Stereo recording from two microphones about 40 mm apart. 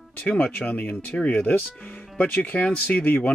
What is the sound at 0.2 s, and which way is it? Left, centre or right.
Speech, left.